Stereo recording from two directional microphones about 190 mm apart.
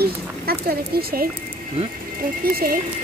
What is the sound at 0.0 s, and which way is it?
Speech, 55° right (ahead or behind).